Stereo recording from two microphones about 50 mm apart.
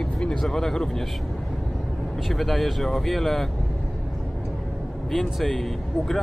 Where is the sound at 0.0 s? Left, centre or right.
Centre.